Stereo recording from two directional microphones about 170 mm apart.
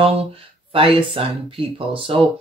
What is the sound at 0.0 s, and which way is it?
Speech, 35° right (ahead or behind).